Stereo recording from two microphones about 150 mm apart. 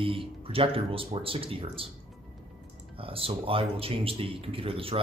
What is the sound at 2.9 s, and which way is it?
Speech, 35° right (ahead or behind).